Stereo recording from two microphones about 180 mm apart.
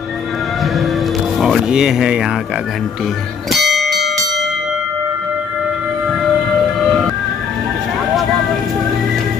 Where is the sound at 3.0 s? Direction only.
Centre (ahead or behind).